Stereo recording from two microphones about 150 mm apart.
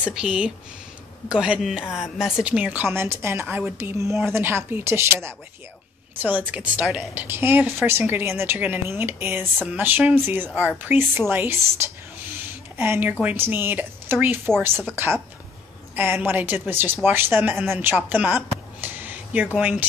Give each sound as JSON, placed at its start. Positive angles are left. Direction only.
{"t": 0.0, "sound": "a woman's voice", "side_deg": -5}